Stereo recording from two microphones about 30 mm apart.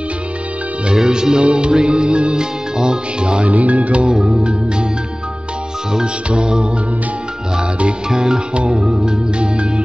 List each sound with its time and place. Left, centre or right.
1.0 s music: right
3.4 s speech: right
4.1 s music: right
6.3 s music: right
8.1 s music: right
9.4 s music: right